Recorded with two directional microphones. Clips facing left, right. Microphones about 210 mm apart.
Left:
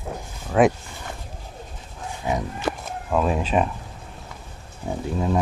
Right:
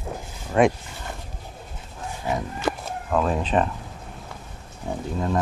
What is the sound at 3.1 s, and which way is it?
Speech, 10° left (ahead or behind).